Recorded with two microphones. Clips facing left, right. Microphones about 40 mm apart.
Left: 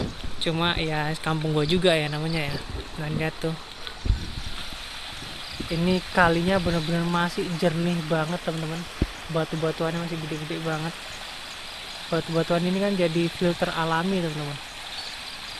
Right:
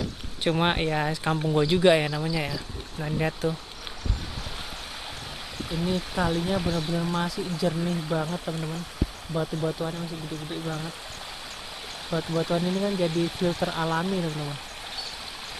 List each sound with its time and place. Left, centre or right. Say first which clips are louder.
0.4 s speech: right 1 dB; centre
3.0 s speech: right 1 dB; centre
5.7 s speech: left 4 dB; left
5.9 s speech: left 9 dB; left
6.6 s speech: left 2 dB; left
12.4 s speech: left 2 dB; left